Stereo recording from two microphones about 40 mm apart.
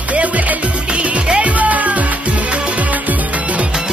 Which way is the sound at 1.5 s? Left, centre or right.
Right.